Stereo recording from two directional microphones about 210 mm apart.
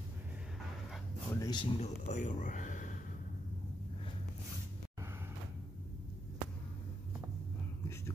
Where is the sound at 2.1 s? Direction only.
35° left (ahead or behind).